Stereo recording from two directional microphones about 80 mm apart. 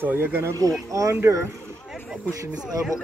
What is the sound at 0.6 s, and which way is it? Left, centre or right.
Speech, right.